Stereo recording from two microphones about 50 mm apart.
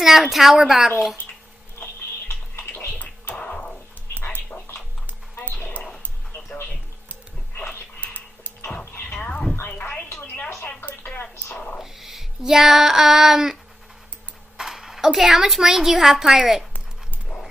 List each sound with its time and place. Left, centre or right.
0.0 s a woman's voice: centre
1.8 s tick-tock: left
3.0 s scratching: left
5.4 s dog: left
9.1 s a sound: left
11.8 s child singing: centre
14.6 s a sound: centre
15.2 s a woman's voice: centre